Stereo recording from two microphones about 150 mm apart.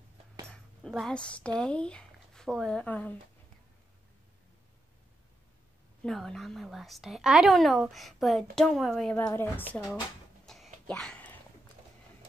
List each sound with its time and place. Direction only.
0.5 s speech: 5° left (ahead or behind)
6.0 s a woman's voice: centre (ahead or behind)
9.1 s a woman's voice: 15° left (ahead or behind)
10.4 s a sound: 5° left (ahead or behind)